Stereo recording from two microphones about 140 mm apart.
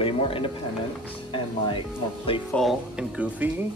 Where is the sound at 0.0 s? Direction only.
40° left (ahead or behind).